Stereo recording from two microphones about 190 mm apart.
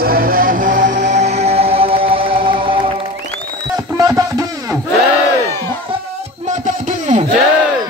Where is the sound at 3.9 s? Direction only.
20° right (ahead or behind).